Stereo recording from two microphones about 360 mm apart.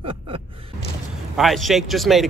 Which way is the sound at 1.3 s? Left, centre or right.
Centre.